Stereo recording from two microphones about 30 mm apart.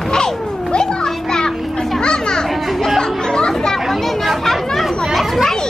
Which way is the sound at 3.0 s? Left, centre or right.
Left.